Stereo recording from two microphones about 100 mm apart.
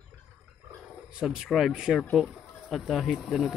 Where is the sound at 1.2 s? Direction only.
5° right (ahead or behind).